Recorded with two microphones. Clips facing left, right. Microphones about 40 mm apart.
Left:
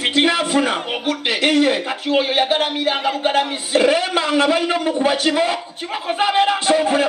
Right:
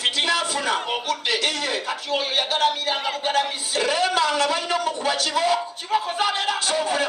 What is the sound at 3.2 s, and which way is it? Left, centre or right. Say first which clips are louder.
A man's voice: left 4 dB; left.